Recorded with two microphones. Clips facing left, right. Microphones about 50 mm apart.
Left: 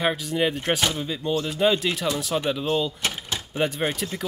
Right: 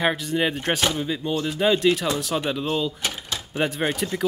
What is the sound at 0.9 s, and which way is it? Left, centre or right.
Speech, centre.